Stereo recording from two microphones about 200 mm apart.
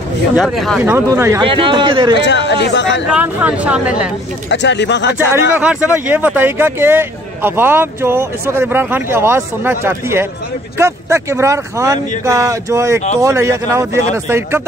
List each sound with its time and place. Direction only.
0.4 s speech: centre (ahead or behind)
0.8 s speech: 10° right (ahead or behind)
1.4 s a man's voice: 25° right (ahead or behind)
2.1 s speech: 60° left (ahead or behind)
3.1 s speech: 5° right (ahead or behind)
4.5 s speech: 60° left (ahead or behind)
5.5 s speech: 5° right (ahead or behind)